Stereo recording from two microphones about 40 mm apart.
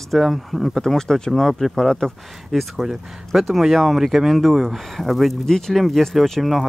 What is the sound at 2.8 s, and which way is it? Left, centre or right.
Speech, centre.